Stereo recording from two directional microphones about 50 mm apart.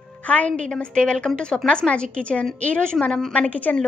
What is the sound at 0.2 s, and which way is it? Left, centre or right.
A woman's voice, left.